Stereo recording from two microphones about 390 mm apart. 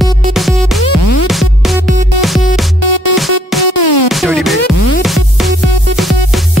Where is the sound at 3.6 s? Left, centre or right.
Left.